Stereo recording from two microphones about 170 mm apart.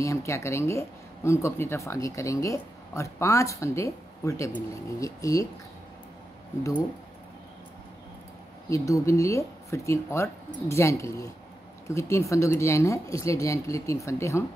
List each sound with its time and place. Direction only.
0.0 s speech: 15° left (ahead or behind)
8.6 s speech: 20° left (ahead or behind)